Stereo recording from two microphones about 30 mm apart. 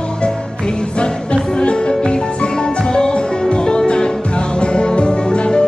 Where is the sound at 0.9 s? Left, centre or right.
Left.